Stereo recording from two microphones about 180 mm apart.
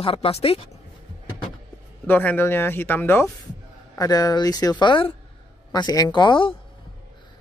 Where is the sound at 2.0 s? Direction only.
10° left (ahead or behind); by 6.5 s 25° left (ahead or behind).